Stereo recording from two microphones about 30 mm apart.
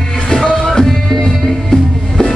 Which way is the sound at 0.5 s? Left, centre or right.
Left.